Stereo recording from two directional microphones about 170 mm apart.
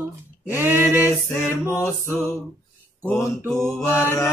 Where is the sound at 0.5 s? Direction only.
10° right (ahead or behind).